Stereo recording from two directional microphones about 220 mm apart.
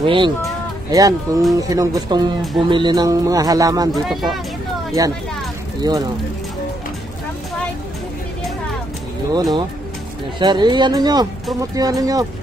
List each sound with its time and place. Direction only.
0.0 s speech: 25° right (ahead or behind)
4.1 s speech: centre (ahead or behind)
5.0 s speech: 15° right (ahead or behind)
9.3 s speech: 20° right (ahead or behind)